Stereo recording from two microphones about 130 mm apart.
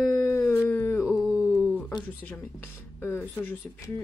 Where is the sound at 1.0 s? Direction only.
5° right (ahead or behind).